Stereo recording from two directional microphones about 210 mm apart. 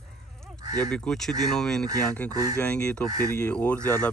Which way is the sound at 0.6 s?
20° right (ahead or behind).